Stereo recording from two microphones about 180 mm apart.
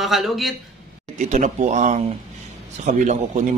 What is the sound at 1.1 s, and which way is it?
Speech, 40° right (ahead or behind).